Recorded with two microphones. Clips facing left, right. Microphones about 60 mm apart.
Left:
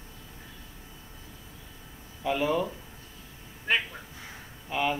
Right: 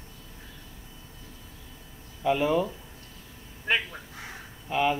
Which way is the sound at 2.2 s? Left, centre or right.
Centre.